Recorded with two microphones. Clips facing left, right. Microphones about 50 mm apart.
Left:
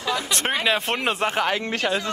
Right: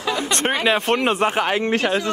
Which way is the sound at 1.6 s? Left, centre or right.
Right.